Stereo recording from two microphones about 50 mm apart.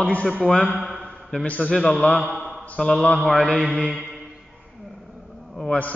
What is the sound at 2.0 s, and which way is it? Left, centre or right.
Speech, left.